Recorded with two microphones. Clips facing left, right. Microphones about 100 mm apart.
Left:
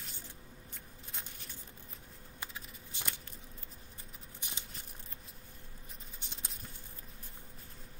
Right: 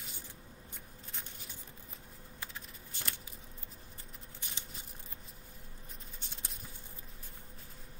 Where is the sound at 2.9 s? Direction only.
20° left (ahead or behind).